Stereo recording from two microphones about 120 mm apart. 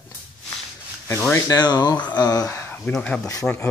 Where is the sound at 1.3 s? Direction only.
30° left (ahead or behind).